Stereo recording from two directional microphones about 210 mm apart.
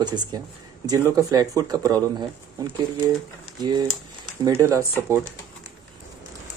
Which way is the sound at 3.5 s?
20° right (ahead or behind).